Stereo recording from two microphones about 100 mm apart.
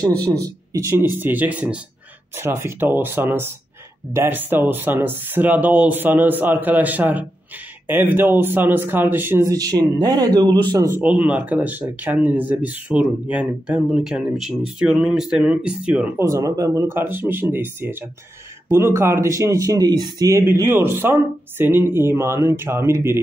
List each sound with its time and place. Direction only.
0.4 s speech: 30° right (ahead or behind); by 1.8 s 15° right (ahead or behind)
2.3 s speech: 25° right (ahead or behind)
9.4 s speech: 35° right (ahead or behind)
10.9 s speech: 15° right (ahead or behind)
16.2 s speech: 30° right (ahead or behind)
16.9 s speech: 20° right (ahead or behind); by 20.4 s 35° right (ahead or behind)
20.4 s speech: 25° right (ahead or behind)